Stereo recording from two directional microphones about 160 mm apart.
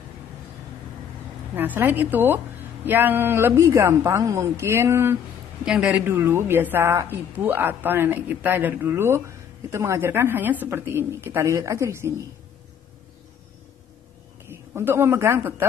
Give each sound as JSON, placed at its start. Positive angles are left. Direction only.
{"t": 1.5, "sound": "a woman's voice", "side_deg": -10}
{"t": 14.5, "sound": "a man's voice", "side_deg": -15}